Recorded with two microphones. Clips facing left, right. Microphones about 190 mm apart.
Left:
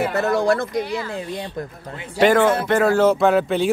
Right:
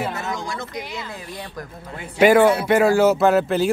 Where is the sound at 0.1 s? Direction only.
60° left (ahead or behind).